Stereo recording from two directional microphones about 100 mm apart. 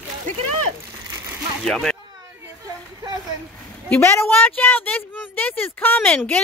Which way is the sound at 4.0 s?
25° left (ahead or behind).